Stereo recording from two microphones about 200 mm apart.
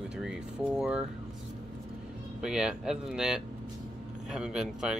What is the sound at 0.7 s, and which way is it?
Speech, 5° right (ahead or behind).